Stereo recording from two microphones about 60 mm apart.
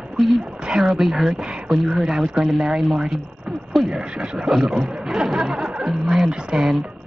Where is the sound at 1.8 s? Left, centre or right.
Centre.